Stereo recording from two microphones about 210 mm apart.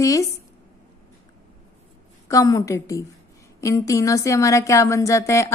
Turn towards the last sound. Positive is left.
turn(degrees=15)  # may be behind; listen again after turning